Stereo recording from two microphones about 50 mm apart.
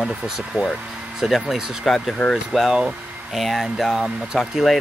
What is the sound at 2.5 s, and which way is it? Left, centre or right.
Speech, centre.